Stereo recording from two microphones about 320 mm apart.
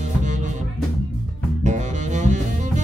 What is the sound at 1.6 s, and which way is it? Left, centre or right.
Music, right.